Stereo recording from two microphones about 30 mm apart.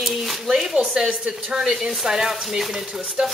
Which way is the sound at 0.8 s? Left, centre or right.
Centre.